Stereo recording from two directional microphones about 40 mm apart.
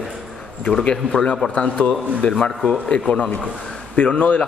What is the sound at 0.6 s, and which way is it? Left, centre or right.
A man's voice, left.